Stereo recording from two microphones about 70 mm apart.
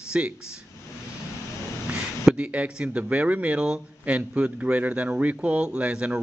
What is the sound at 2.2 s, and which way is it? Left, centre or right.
Speech, centre.